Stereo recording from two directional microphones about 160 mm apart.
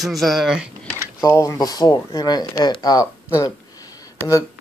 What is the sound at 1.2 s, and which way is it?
Speech, 20° left (ahead or behind).